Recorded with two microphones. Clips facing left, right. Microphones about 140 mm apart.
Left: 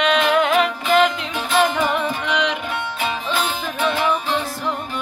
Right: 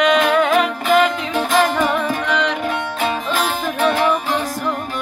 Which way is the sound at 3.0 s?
45° right (ahead or behind).